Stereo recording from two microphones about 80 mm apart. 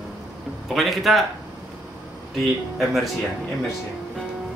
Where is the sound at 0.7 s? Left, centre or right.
Centre.